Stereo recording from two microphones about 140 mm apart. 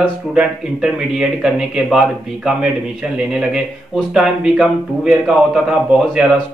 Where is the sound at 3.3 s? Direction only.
5° right (ahead or behind).